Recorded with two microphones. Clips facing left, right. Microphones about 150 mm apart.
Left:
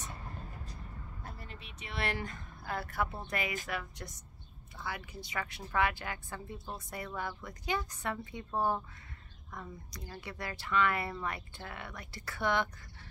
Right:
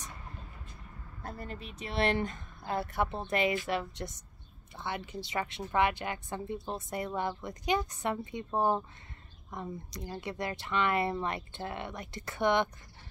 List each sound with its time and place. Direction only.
1.2 s speech: 40° right (ahead or behind)
2.0 s a woman's voice: 25° right (ahead or behind)